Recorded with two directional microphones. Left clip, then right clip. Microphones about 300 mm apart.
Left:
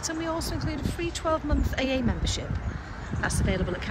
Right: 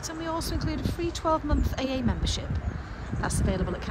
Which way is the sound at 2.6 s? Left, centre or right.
Centre.